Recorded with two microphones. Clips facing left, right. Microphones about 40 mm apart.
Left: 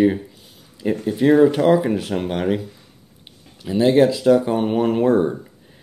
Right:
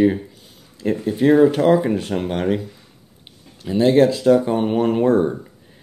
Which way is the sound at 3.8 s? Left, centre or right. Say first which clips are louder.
Even; centre.